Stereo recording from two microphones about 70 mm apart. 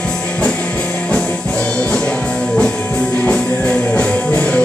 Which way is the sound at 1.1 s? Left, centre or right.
Centre.